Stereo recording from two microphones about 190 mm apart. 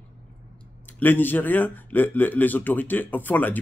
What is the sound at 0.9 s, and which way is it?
Speech, 10° left (ahead or behind).